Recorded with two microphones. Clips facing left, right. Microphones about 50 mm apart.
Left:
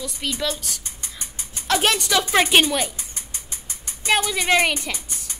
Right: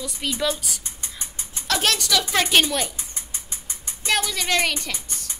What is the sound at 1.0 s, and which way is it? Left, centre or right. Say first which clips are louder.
Rodents: even; right.